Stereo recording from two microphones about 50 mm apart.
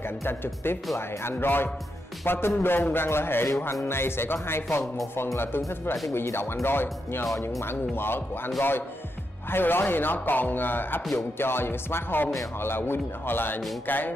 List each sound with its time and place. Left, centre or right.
0.2 s speech: left
3.4 s music: left
3.8 s speech: left
9.5 s speech: left
13.8 s music: left